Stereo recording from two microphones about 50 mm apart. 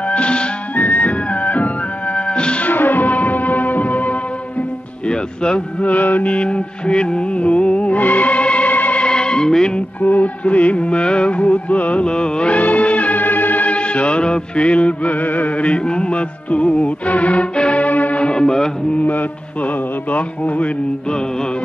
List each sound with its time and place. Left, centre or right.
0.1 s music: left
0.7 s music: left
2.6 s music: left
5.0 s music: centre
5.9 s music: left
9.0 s music: centre
10.0 s music: left
15.6 s music: left
20.1 s music: left